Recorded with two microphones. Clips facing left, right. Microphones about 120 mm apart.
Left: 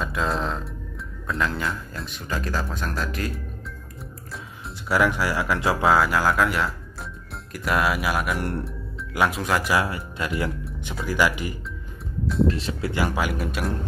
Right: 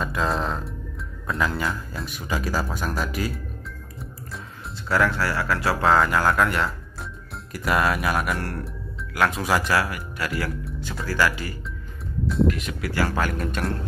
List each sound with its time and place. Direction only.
0.0 s speech: centre (ahead or behind)
4.8 s speech: 15° left (ahead or behind)
8.4 s speech: 20° left (ahead or behind)
9.3 s speech: centre (ahead or behind)
9.8 s speech: 25° left (ahead or behind)
12.4 s speech: 30° left (ahead or behind); by 13.7 s 5° left (ahead or behind)